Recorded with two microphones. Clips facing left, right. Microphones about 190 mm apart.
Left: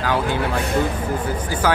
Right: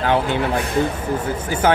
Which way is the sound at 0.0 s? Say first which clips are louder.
Right 3 dB; 25° right (ahead or behind).